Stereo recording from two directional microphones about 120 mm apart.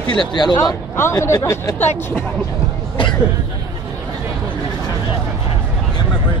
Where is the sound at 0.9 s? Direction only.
20° left (ahead or behind).